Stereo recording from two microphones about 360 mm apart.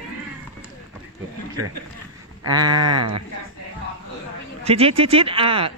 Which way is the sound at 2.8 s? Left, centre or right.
Right.